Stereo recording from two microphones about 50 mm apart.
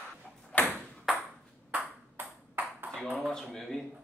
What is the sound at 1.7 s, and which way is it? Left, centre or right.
Ping, right.